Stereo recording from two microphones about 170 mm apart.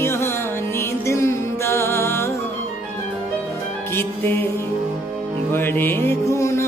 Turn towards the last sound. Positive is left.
turn(degrees=15)  # may be behind; listen again after turning